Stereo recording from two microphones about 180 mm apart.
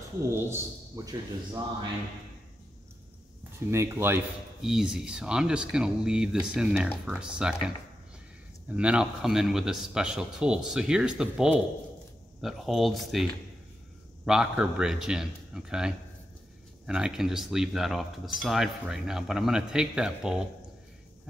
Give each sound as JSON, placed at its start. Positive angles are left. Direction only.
{"t": 0.3, "sound": "a man's voice", "side_deg": -15}
{"t": 3.5, "sound": "speech", "side_deg": -15}
{"t": 4.6, "sound": "speech", "side_deg": 0}
{"t": 8.6, "sound": "speech", "side_deg": -5}